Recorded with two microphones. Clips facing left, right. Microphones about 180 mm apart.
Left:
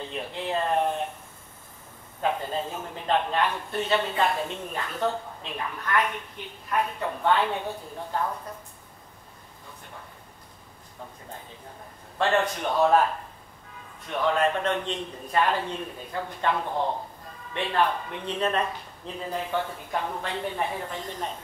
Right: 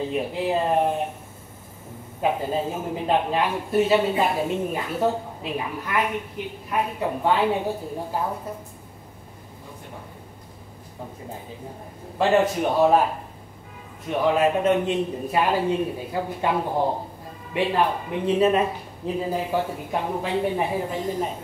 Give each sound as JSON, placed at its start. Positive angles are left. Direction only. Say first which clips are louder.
{"t": 0.0, "sound": "a man's voice", "louder": "right 8 dB", "side_deg": -10}
{"t": 2.2, "sound": "a man's voice", "louder": "right 4 dB", "side_deg": -10}
{"t": 12.2, "sound": "a man's voice", "louder": "right 5 dB", "side_deg": -10}